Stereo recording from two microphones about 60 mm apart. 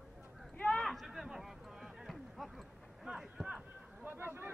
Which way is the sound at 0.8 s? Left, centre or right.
Centre.